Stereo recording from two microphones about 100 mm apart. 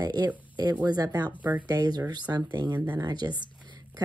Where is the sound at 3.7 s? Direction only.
45° right (ahead or behind).